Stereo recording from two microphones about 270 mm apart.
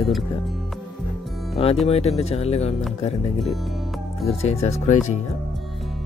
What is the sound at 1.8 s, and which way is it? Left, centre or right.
Speech, left.